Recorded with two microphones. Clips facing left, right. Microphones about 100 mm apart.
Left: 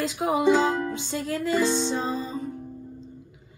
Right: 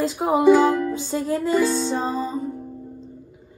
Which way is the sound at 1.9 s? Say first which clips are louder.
Right 4 dB; 45° right (ahead or behind).